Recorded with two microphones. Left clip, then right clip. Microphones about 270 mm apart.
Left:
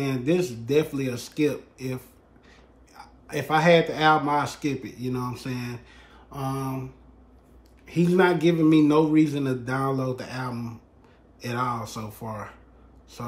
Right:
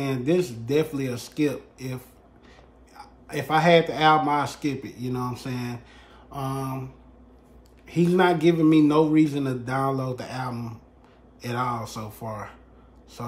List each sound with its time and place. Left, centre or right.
0.0 s a man's voice: centre